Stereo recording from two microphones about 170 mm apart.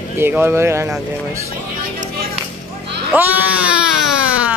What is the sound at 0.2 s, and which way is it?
Speech, 15° right (ahead or behind).